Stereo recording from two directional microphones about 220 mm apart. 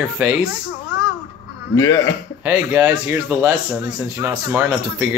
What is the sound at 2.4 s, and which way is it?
Speech, 10° right (ahead or behind).